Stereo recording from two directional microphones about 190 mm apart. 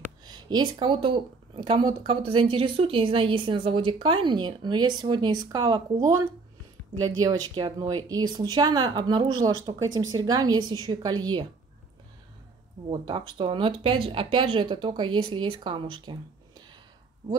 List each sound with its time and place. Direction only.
0.2 s speech: 20° right (ahead or behind)
12.9 s speech: 25° right (ahead or behind)